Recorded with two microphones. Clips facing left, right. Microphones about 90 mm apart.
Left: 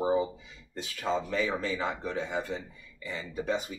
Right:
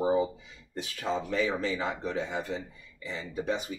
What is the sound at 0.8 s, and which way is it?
Speech, 10° right (ahead or behind).